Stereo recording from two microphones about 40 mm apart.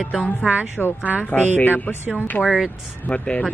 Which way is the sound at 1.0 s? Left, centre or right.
Right.